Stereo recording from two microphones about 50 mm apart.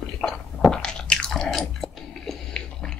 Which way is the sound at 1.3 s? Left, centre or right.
Centre.